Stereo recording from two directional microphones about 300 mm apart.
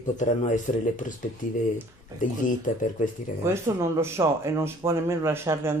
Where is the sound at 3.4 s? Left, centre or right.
Centre.